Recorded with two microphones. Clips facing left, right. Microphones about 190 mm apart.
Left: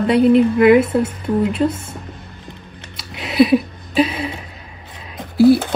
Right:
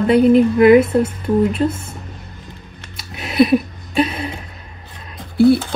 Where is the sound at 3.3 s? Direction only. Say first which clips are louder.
Even; centre (ahead or behind).